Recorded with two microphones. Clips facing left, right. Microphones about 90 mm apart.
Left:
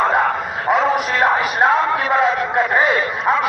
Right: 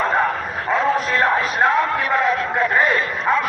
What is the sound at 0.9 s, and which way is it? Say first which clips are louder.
Music: left 2 dB; 15° left (ahead or behind).